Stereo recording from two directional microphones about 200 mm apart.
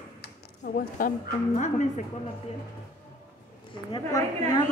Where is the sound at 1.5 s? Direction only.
40° left (ahead or behind).